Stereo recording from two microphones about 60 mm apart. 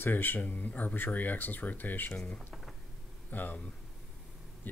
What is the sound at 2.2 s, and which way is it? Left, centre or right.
Speech, centre.